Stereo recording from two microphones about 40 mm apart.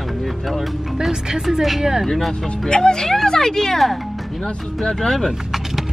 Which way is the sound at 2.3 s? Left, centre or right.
Centre.